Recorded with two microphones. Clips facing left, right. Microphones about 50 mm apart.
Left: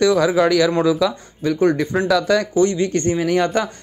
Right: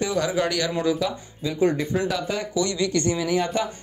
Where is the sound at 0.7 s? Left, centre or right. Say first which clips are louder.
Left 6 dB; left.